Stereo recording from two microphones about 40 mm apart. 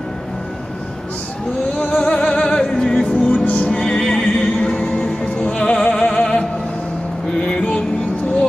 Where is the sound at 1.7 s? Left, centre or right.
Left.